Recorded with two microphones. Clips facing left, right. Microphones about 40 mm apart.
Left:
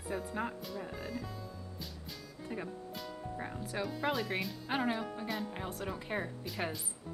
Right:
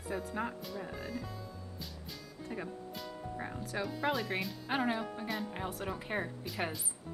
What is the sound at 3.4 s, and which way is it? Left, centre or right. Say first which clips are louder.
Speech: even; centre.